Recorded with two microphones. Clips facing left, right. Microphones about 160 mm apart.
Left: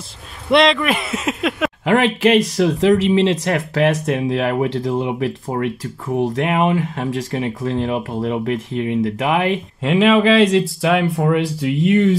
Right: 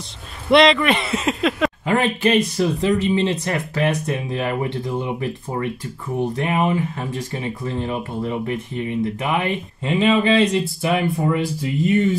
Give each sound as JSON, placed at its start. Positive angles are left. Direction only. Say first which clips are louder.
{"t": 0.5, "sound": "speech", "louder": "even", "side_deg": 0}
{"t": 1.9, "sound": "speech", "louder": "left 5 dB", "side_deg": 90}
{"t": 11.1, "sound": "speech", "louder": "left 3 dB", "side_deg": 80}